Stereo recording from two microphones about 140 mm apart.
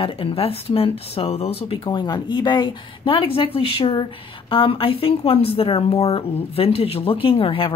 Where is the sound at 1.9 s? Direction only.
30° left (ahead or behind).